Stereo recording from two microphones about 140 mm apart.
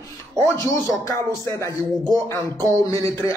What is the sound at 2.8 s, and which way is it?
Speech, 20° left (ahead or behind).